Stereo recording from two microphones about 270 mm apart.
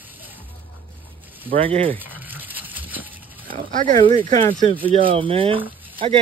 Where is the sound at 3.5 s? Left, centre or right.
Right.